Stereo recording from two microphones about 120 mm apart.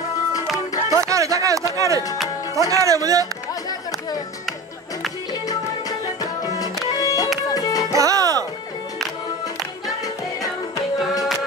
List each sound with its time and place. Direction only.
0.8 s music: 25° right (ahead or behind)
2.5 s speech: 25° right (ahead or behind)
6.4 s music: 30° left (ahead or behind)
7.9 s music: 30° right (ahead or behind)